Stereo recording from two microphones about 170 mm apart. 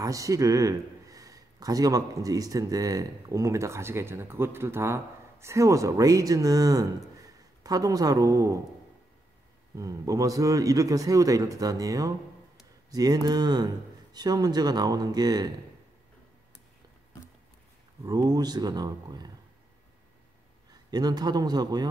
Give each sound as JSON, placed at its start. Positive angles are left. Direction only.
{"t": 0.0, "sound": "speech", "side_deg": -20}
{"t": 9.8, "sound": "speech", "side_deg": -20}
{"t": 18.0, "sound": "speech", "side_deg": -20}
{"t": 20.9, "sound": "speech", "side_deg": -25}